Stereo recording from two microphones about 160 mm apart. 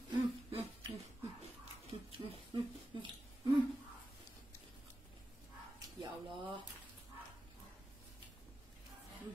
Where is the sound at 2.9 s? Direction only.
30° right (ahead or behind).